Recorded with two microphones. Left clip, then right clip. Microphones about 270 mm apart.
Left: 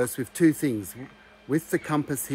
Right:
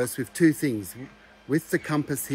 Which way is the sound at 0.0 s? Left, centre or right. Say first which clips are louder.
Even; centre.